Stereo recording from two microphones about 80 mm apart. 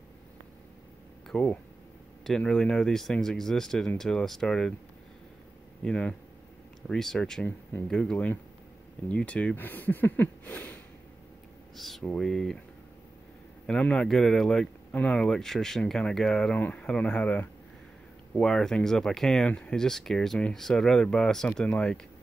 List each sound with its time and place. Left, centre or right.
1.3 s speech: centre
5.8 s speech: centre
11.7 s speech: centre
13.7 s speech: centre
14.9 s speech: centre
15.2 s speech: centre